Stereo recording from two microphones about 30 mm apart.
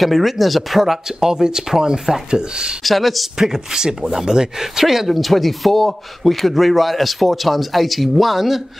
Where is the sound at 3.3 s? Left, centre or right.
Centre.